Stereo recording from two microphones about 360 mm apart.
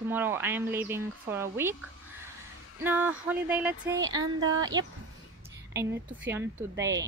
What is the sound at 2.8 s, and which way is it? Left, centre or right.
Speech, centre.